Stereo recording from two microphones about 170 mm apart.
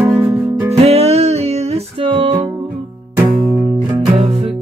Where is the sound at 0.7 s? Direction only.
40° right (ahead or behind).